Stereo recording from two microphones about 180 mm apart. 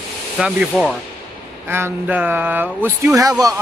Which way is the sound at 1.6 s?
10° right (ahead or behind).